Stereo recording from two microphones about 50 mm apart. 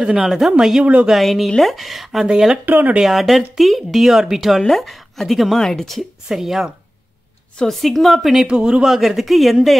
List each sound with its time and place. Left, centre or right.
0.2 s speech: centre
1.1 s speech: centre
2.2 s speech: centre
2.6 s speech: right
3.0 s speech: centre
6.2 s speech: centre
7.6 s speech: centre
8.5 s speech: centre
8.9 s speech: centre